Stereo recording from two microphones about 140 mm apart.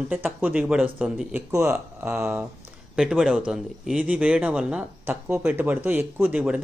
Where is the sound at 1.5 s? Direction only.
20° right (ahead or behind).